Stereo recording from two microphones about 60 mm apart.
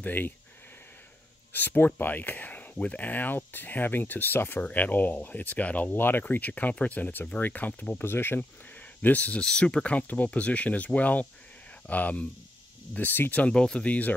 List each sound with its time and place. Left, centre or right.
0.0 s speech: left
1.5 s speech: left
4.6 s speech: left
5.9 s speech: left
8.0 s speech: left
8.7 s a sound: left
9.4 s speech: centre; by 13.4 s left
13.5 s speech: centre